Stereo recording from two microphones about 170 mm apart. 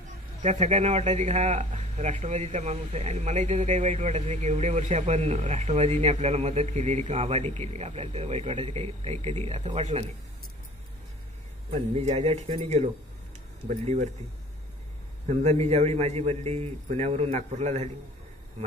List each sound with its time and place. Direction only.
0.4 s speech: 45° right (ahead or behind)
11.7 s speech: 40° right (ahead or behind)
15.2 s speech: 40° right (ahead or behind)